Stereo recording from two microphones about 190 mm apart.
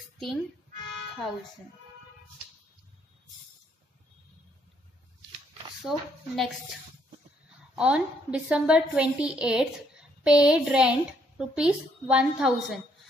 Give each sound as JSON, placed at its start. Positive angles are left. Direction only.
{"t": 5.9, "sound": "a woman's voice", "side_deg": 0}
{"t": 7.7, "sound": "a woman's voice", "side_deg": -5}